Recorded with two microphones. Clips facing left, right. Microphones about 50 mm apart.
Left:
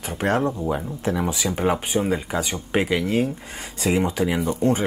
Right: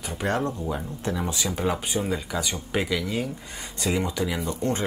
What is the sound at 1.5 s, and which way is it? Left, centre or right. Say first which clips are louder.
Speech: left 5 dB; left.